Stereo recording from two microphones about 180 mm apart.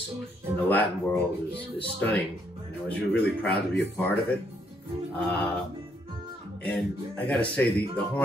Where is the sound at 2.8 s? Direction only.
5° left (ahead or behind).